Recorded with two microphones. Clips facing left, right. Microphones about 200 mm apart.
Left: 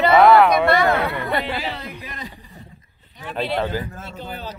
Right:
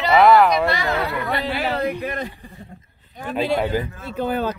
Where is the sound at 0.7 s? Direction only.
55° left (ahead or behind).